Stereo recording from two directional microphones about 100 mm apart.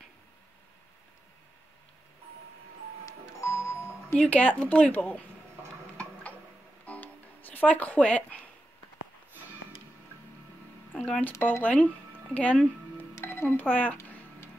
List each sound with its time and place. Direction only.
3.1 s music: 30° left (ahead or behind)
4.1 s speech: 10° left (ahead or behind)
6.9 s music: 15° left (ahead or behind)
10.9 s speech: 10° left (ahead or behind)
13.1 s music: 25° left (ahead or behind)